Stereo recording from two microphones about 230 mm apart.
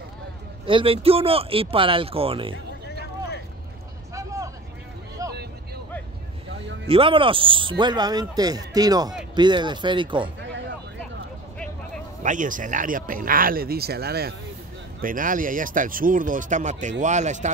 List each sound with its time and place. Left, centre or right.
0.7 s speech: right
2.5 s vehicle: left
4.1 s vehicle: centre
6.9 s speech: right
12.2 s speech: right